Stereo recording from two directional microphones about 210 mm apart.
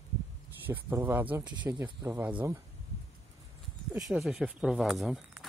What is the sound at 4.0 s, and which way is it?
Speech, centre (ahead or behind).